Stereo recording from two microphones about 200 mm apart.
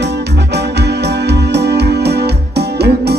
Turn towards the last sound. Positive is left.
turn(degrees=-55)  # may be behind; listen again after turning